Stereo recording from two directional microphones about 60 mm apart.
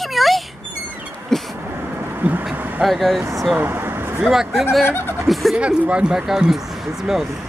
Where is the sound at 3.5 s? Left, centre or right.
Right.